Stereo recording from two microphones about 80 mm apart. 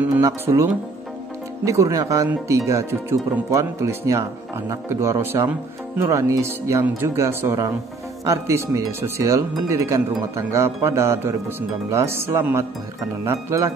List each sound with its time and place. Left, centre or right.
0.2 s speech: right
5.3 s speech: right